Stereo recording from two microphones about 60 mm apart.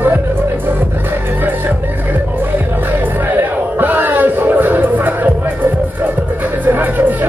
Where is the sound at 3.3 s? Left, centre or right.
Right.